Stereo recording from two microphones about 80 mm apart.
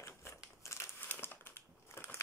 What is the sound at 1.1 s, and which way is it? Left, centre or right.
Crushing, left.